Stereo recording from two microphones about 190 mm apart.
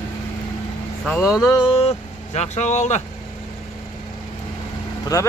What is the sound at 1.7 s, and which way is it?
Speech, 30° left (ahead or behind).